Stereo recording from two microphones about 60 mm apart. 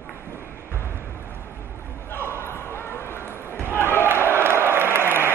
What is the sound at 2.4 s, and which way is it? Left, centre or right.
Basketball bounce, left.